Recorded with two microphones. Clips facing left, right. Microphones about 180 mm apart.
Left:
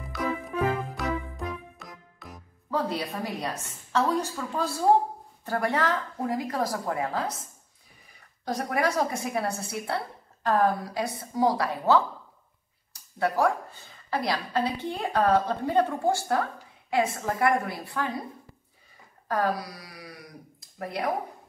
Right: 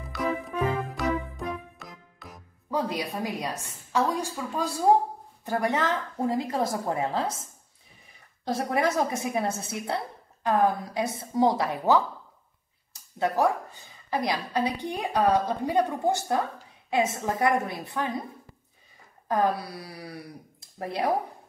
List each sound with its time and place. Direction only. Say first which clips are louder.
0.1 s music: right 1 dB; centre (ahead or behind)
2.7 s a woman's voice: even; 15° right (ahead or behind)
8.5 s a woman's voice: right 1 dB; 25° right (ahead or behind)
19.2 s a woman's voice: right 2 dB; 20° right (ahead or behind)